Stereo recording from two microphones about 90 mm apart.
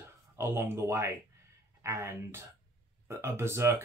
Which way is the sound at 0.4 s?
30° right (ahead or behind).